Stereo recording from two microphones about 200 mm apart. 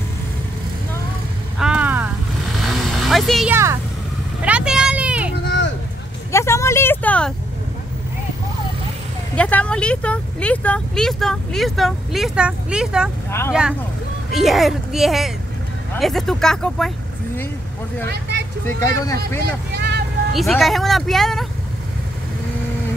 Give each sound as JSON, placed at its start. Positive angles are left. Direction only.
{"t": 1.6, "sound": "a sound", "side_deg": -5}
{"t": 2.6, "sound": "vehicle", "side_deg": 0}
{"t": 3.5, "sound": "speech", "side_deg": -15}
{"t": 4.4, "sound": "vehicle", "side_deg": -5}
{"t": 5.3, "sound": "a sound", "side_deg": 60}
{"t": 6.3, "sound": "vehicle", "side_deg": 15}
{"t": 9.3, "sound": "speech", "side_deg": 5}
{"t": 18.0, "sound": "speech", "side_deg": -55}
{"t": 18.8, "sound": "speech", "side_deg": 15}
{"t": 19.7, "sound": "vehicle", "side_deg": -55}
{"t": 20.3, "sound": "speech", "side_deg": 0}